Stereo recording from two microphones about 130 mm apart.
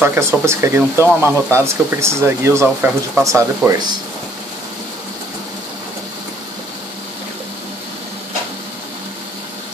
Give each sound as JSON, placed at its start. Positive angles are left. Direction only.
{"t": 0.0, "sound": "speech", "side_deg": -20}